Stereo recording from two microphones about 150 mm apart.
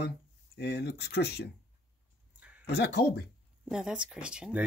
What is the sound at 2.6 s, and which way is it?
Speech, 90° left.